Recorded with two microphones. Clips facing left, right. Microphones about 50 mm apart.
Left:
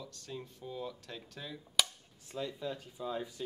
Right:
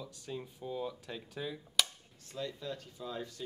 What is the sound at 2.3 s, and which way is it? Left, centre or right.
Speech, centre.